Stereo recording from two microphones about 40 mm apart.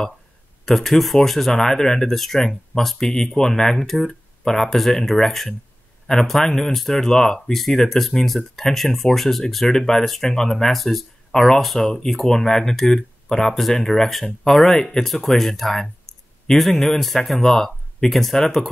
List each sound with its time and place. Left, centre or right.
0.7 s speech: centre
3.7 s speech: centre
11.8 s speech: centre